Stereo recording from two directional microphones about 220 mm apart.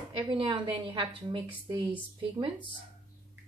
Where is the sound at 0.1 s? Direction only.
20° right (ahead or behind).